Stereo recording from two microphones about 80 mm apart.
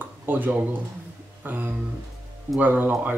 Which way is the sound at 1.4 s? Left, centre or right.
Right.